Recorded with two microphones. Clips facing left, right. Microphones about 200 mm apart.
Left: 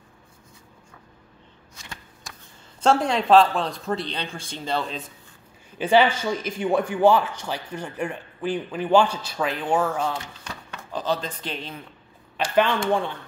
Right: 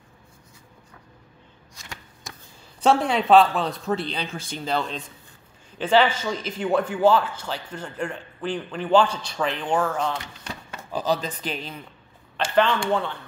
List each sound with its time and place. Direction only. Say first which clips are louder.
2.8 s speech: even; 5° right (ahead or behind)
10.9 s a man's voice: right 2 dB; 5° right (ahead or behind)
12.5 s speech: even; 15° left (ahead or behind)